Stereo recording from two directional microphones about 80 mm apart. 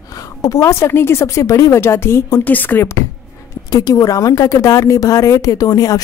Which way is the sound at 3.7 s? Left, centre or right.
Left.